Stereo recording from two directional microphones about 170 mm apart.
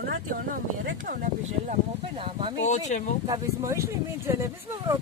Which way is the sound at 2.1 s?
35° right (ahead or behind).